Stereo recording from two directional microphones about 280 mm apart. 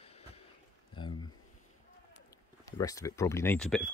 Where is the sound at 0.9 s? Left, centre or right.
Centre.